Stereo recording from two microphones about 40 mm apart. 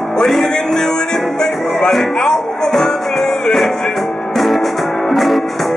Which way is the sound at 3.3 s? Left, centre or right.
Centre.